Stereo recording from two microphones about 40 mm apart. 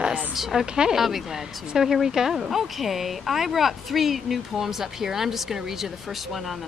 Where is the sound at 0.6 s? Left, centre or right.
Centre.